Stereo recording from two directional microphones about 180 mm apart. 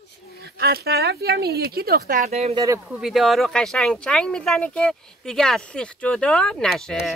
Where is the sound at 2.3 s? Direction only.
35° right (ahead or behind).